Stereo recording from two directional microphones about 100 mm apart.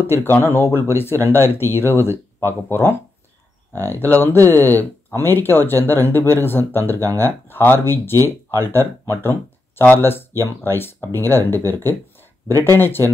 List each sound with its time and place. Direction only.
0.0 s speech: 25° left (ahead or behind)